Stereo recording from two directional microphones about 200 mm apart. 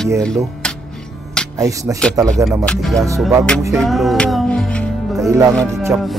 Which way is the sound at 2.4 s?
5° left (ahead or behind).